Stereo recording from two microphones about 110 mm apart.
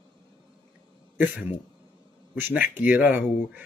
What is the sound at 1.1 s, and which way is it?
Speech, 20° right (ahead or behind).